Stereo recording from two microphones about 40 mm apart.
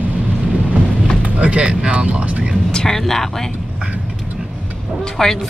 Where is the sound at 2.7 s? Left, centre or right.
Centre.